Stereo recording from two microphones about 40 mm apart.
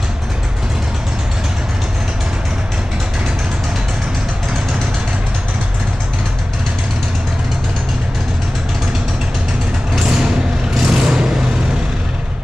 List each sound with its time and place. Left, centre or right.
10.9 s vehicle: centre